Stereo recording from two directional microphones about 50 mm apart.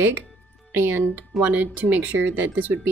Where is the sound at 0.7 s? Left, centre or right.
Right.